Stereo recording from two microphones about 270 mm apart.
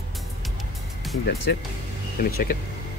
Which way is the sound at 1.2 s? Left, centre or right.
Left.